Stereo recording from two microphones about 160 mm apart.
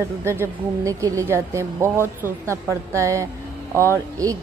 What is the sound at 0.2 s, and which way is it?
A woman's voice, 15° right (ahead or behind).